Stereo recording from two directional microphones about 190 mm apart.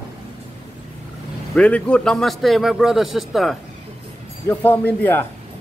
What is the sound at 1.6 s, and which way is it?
A man's voice, 5° left (ahead or behind).